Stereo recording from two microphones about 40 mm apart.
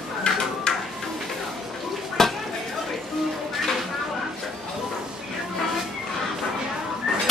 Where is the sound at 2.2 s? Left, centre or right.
Centre.